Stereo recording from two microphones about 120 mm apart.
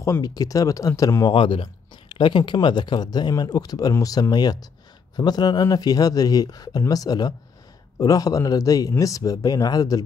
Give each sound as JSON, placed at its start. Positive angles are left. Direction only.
{"t": 0.0, "sound": "speech", "side_deg": 30}
{"t": 1.3, "sound": "speech", "side_deg": 45}